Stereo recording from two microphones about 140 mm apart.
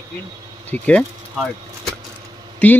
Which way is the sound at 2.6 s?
10° left (ahead or behind).